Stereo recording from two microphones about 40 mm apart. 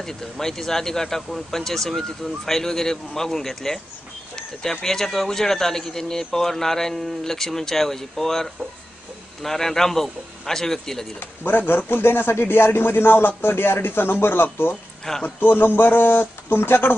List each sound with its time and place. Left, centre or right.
0.0 s speech: centre
11.1 s speech: left
15.2 s speech: left